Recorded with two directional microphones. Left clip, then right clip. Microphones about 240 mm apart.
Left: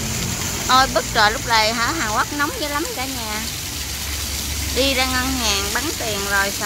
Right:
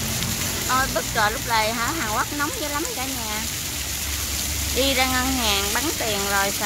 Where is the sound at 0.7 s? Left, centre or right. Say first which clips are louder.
Left 8 dB; centre.